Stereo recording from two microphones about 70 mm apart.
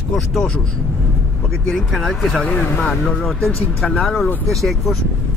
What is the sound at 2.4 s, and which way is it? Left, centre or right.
Speech, centre.